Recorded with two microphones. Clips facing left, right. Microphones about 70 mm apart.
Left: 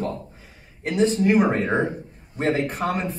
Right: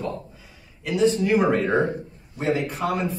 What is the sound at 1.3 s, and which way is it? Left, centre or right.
Speech, left.